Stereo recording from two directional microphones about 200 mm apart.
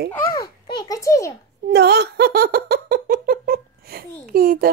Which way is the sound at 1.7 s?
55° right (ahead or behind).